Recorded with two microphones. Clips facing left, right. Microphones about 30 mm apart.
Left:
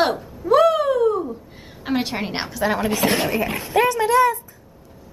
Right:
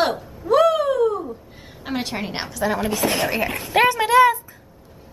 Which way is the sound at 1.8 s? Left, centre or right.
Centre.